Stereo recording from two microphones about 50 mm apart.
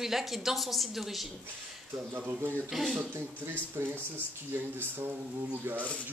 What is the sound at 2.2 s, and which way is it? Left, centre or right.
Speech, right.